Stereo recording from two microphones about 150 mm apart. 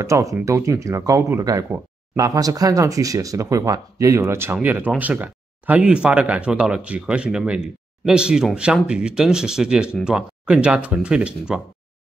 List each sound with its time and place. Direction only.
0.0 s speech: 20° right (ahead or behind)